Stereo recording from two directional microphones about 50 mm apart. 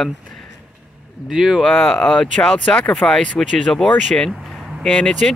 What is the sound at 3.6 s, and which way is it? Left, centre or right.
Speech, centre.